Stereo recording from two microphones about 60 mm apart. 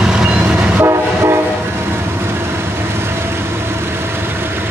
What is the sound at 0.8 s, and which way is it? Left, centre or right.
Train, right.